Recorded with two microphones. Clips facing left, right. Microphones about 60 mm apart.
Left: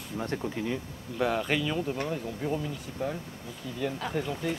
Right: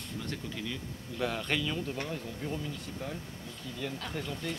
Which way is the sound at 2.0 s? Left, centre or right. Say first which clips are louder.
Left 5 dB; left.